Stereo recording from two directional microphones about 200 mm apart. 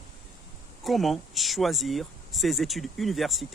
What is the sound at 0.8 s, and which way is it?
Speech, centre (ahead or behind).